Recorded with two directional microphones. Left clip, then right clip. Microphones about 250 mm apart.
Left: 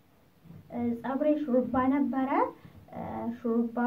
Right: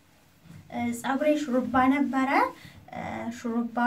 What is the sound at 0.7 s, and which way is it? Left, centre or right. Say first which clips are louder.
A woman's voice: right 3 dB; centre.